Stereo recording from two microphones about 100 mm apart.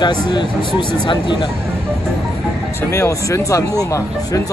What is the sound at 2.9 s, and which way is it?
Speech, 30° left (ahead or behind).